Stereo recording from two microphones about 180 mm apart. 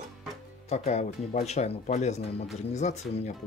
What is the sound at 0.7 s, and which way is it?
Speech, 35° left (ahead or behind).